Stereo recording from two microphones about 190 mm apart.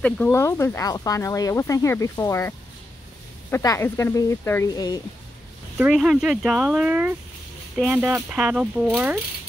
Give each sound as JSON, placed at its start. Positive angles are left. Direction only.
{"t": 0.0, "sound": "speech", "side_deg": 10}
{"t": 5.8, "sound": "speech", "side_deg": -5}